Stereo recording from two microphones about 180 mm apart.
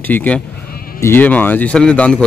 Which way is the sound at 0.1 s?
10° left (ahead or behind).